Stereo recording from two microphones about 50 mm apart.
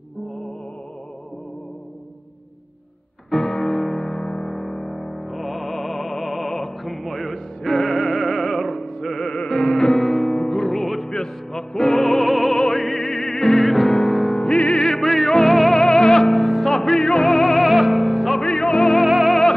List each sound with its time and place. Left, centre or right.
3.3 s music: centre
14.4 s music: left
14.9 s music: centre
18.4 s music: centre
18.9 s music: centre